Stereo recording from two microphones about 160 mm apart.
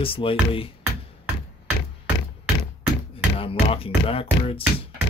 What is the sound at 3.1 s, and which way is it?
Speech, 35° left (ahead or behind).